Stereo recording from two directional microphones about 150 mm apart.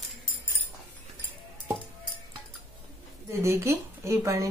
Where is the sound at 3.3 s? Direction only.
20° right (ahead or behind).